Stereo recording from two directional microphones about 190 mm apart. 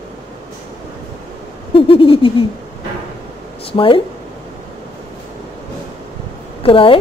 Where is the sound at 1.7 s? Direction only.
30° left (ahead or behind).